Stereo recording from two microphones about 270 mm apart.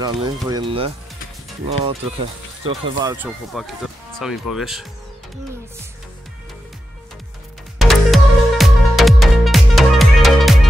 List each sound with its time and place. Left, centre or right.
0.0 s speech: centre
3.5 s speech: centre
7.8 s music: centre